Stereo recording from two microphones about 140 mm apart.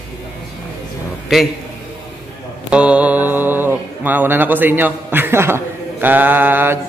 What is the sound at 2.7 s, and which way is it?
A man's voice, 10° right (ahead or behind).